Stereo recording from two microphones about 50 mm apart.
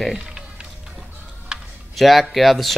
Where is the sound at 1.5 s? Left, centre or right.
Centre.